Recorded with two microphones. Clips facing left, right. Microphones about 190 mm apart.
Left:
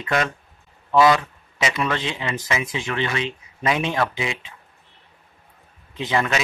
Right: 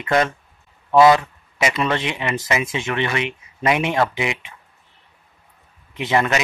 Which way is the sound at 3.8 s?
20° right (ahead or behind).